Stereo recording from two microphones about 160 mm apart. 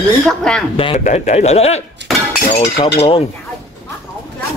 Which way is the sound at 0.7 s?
35° left (ahead or behind).